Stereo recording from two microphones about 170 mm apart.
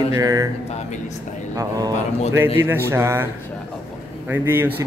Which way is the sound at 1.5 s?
20° right (ahead or behind).